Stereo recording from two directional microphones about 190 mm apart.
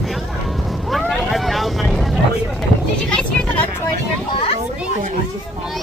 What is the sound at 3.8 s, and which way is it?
Vehicle, 25° left (ahead or behind).